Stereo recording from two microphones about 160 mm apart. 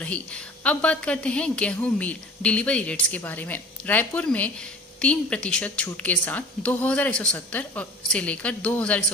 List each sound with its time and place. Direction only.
0.0 s a woman's voice: 10° left (ahead or behind)